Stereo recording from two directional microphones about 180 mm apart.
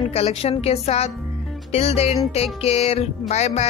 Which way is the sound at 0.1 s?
35° left (ahead or behind).